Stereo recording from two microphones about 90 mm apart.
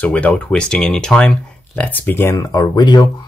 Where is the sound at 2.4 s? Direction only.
45° left (ahead or behind).